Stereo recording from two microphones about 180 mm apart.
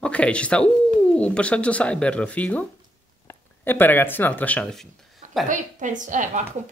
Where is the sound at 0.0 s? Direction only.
5° left (ahead or behind).